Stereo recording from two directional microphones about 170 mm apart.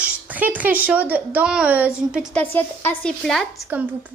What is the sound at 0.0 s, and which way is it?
Speech, 10° right (ahead or behind).